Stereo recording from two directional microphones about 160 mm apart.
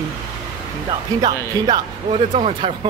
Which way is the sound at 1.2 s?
30° right (ahead or behind).